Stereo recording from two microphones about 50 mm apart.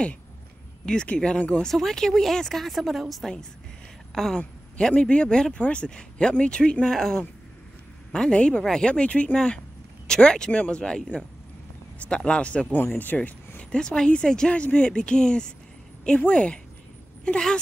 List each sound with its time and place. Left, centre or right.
1.0 s speech: left
1.6 s speech: centre; by 12.6 s left
12.7 s speech: left
13.6 s speech: centre